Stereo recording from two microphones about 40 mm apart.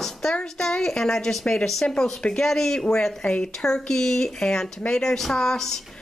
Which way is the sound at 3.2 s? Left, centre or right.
Left.